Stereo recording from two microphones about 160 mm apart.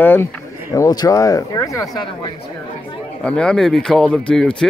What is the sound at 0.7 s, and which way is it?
Speech, 25° left (ahead or behind).